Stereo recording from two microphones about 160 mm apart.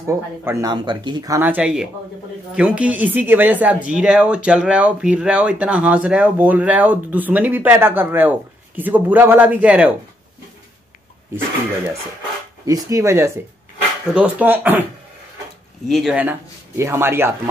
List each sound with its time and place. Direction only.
0.0 s speech: 20° right (ahead or behind)
1.4 s speech: 10° right (ahead or behind)
12.6 s speech: 20° right (ahead or behind)
15.9 s speech: centre (ahead or behind)